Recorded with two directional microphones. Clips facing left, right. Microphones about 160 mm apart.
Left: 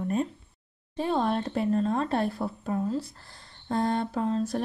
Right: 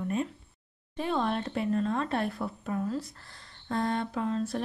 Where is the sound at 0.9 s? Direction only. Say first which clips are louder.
Left 3 dB; 35° left (ahead or behind).